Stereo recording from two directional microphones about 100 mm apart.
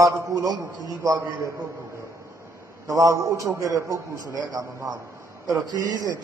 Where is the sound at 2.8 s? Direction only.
35° right (ahead or behind).